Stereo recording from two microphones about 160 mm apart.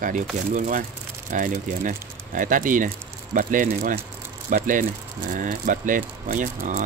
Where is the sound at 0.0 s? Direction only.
55° right (ahead or behind).